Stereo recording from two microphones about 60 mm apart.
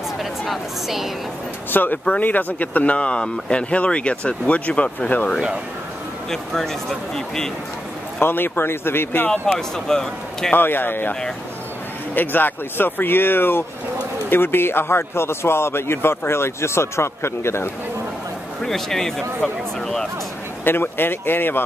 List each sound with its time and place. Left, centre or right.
0.2 s speech: centre
1.7 s speech: left
6.3 s a man's voice: centre
8.2 s speech: left
9.8 s speech: centre
10.5 s speech: left
12.2 s a man's voice: left
18.6 s a man's voice: centre
20.6 s speech: left